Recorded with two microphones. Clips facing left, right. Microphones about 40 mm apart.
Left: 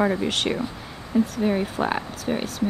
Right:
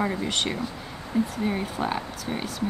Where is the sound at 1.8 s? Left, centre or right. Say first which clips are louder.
Left 3 dB; centre.